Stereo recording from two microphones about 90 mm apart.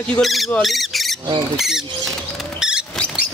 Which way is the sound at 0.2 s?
Centre (ahead or behind).